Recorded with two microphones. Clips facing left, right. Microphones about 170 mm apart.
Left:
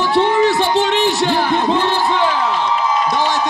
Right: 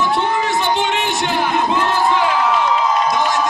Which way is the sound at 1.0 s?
35° left (ahead or behind).